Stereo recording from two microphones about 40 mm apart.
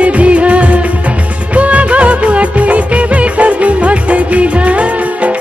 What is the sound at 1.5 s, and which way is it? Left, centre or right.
Music of bollywood, right.